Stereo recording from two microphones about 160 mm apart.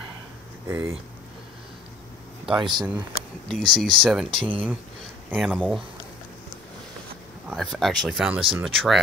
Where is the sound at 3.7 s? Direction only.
5° left (ahead or behind).